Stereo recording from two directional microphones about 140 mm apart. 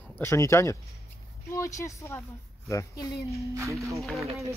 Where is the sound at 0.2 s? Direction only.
20° left (ahead or behind).